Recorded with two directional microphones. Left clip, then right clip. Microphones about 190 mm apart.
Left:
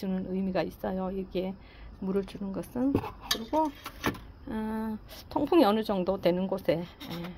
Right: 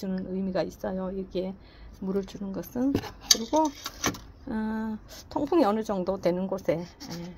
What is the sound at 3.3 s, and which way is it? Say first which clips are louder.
Speech: even; 40° right (ahead or behind).